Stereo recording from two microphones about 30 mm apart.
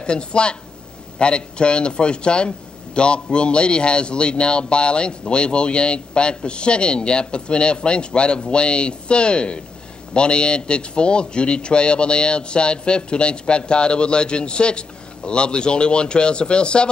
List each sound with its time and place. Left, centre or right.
0.0 s speech: left